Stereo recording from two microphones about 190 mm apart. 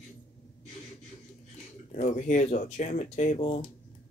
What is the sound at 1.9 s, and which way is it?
Speech, 40° left (ahead or behind).